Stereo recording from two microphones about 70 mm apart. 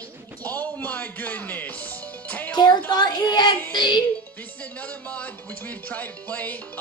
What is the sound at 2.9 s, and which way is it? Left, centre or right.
Speech, left.